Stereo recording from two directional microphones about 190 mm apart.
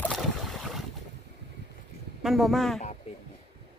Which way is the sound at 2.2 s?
Centre (ahead or behind).